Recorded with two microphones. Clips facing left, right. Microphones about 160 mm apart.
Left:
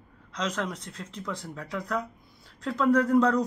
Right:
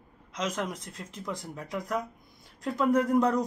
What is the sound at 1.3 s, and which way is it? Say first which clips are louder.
A man's voice: even; 15° right (ahead or behind).